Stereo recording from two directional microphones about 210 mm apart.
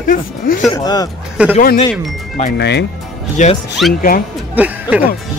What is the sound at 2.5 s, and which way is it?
Speech, 55° left (ahead or behind).